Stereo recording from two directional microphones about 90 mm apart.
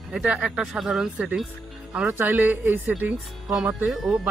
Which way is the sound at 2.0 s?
20° right (ahead or behind).